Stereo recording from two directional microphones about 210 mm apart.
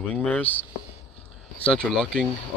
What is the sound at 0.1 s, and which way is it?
Speech, 5° left (ahead or behind).